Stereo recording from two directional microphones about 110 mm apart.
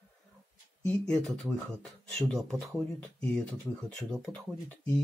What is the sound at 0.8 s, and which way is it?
Speech, 5° left (ahead or behind).